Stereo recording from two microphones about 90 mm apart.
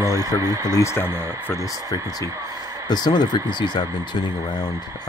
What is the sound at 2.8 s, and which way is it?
Speech, 50° left (ahead or behind).